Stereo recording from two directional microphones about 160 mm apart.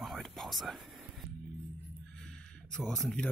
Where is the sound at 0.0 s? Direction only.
Centre (ahead or behind).